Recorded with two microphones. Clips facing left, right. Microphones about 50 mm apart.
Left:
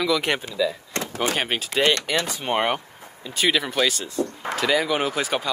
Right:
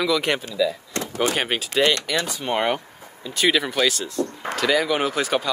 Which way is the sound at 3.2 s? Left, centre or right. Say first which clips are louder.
Right 2 dB; centre.